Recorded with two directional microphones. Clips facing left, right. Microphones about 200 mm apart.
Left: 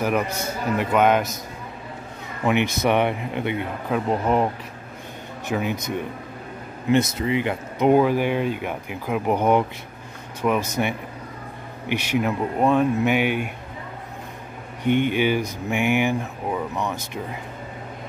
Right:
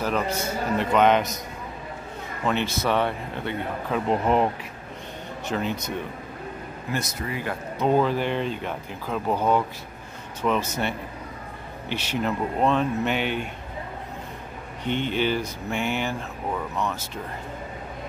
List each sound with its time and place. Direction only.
0.0 s speech: 15° left (ahead or behind)
2.4 s speech: 15° left (ahead or behind)
3.9 s speech: centre (ahead or behind)
5.5 s speech: 10° left (ahead or behind)
6.9 s speech: 25° left (ahead or behind)
14.8 s speech: 15° left (ahead or behind)